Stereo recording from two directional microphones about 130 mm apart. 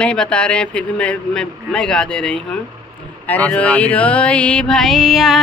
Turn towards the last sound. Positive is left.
turn(degrees=0)  # may be behind; listen again after turning